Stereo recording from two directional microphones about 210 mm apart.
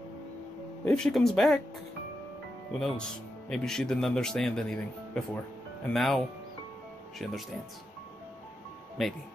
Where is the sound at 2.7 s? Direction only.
Centre (ahead or behind).